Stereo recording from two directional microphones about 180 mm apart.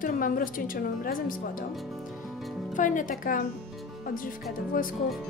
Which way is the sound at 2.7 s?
45° left (ahead or behind).